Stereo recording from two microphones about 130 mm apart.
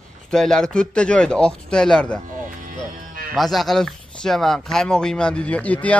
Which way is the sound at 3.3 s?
Centre (ahead or behind).